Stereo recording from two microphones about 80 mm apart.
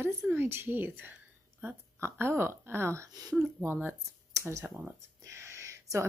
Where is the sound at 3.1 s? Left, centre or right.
Right.